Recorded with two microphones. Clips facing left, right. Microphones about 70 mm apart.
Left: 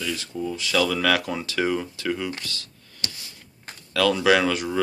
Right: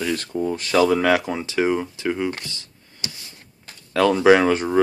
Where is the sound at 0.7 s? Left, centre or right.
Right.